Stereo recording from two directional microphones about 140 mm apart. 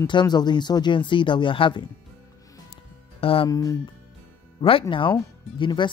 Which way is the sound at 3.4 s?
25° left (ahead or behind).